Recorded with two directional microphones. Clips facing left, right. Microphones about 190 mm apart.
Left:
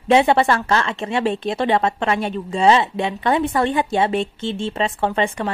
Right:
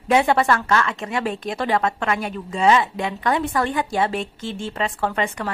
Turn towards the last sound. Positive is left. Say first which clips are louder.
# left 3 dB
turn(degrees=25)  # may be behind; listen again after turning